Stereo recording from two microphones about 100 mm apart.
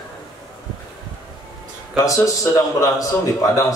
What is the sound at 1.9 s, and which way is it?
A man's voice, 35° left (ahead or behind).